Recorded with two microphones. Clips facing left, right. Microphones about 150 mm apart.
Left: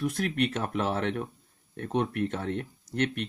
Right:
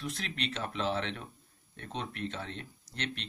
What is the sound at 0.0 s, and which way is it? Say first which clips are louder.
Speech: left 10 dB; 50° left (ahead or behind).